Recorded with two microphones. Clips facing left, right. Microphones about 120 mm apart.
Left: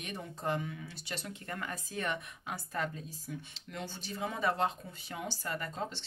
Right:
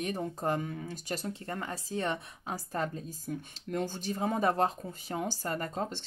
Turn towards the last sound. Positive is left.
turn(degrees=-45)  # may be behind; listen again after turning